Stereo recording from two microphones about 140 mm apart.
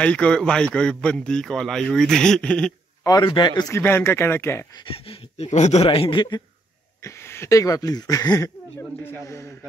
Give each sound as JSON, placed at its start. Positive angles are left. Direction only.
{"t": 0.0, "sound": "a man's voice", "side_deg": 10}
{"t": 3.0, "sound": "a man's voice", "side_deg": 30}
{"t": 3.7, "sound": "speech", "side_deg": 15}
{"t": 4.7, "sound": "speech", "side_deg": 40}
{"t": 5.9, "sound": "a man's voice", "side_deg": 35}
{"t": 7.0, "sound": "a man's voice", "side_deg": 20}